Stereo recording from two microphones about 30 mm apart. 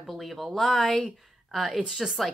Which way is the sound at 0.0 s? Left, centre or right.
Centre.